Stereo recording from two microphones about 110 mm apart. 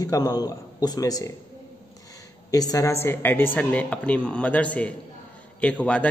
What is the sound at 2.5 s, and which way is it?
A man's voice, 35° left (ahead or behind).